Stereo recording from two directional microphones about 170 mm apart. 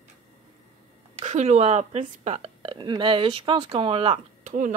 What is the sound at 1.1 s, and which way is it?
A woman's voice, 45° right (ahead or behind).